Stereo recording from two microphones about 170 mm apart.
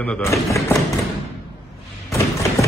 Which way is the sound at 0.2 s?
20° left (ahead or behind).